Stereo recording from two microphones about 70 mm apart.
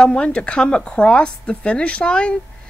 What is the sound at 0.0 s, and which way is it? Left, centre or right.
Speech, centre.